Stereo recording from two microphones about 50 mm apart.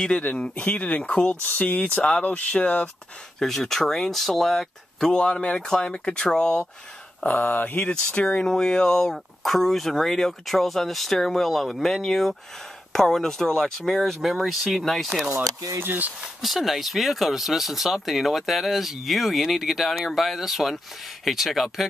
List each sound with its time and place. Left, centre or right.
0.6 s speech: left
3.3 s speech: centre
7.2 s a sound: left
7.8 s speech: left; by 15.1 s centre
15.8 s speech: right
16.3 s speech: centre